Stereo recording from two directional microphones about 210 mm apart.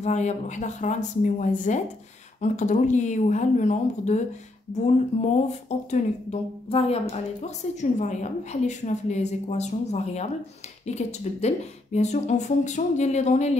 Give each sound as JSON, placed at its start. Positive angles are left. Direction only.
{"t": 0.0, "sound": "a woman's voice", "side_deg": 35}